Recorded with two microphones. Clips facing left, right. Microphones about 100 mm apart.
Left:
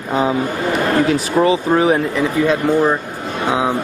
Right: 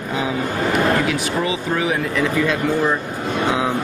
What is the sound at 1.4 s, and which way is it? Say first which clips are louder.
Speech: left 11 dB; 35° left (ahead or behind).